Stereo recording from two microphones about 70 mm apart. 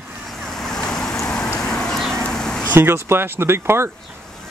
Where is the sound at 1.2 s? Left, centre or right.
Centre.